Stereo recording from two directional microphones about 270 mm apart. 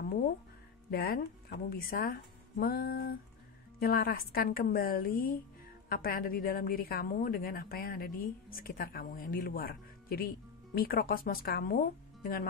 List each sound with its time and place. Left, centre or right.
0.0 s music: left
0.8 s a woman's voice: left